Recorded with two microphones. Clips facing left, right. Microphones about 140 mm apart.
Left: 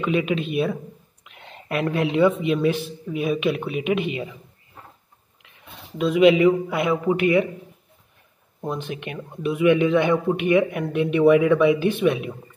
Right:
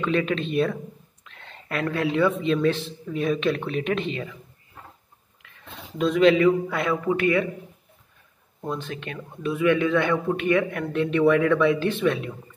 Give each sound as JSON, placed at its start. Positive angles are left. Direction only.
{"t": 0.0, "sound": "a man's voice", "side_deg": 10}
{"t": 5.4, "sound": "a sound", "side_deg": 20}
{"t": 5.9, "sound": "a man's voice", "side_deg": 5}
{"t": 8.5, "sound": "a man's voice", "side_deg": 15}